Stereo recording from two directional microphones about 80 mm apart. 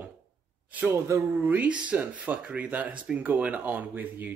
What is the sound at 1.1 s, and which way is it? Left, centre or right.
Speech, right.